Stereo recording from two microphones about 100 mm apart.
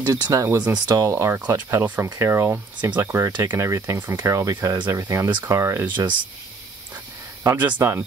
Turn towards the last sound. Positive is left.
turn(degrees=-30)  # may be behind; listen again after turning